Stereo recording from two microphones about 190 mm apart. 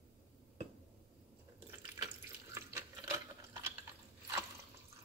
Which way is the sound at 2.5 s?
15° right (ahead or behind).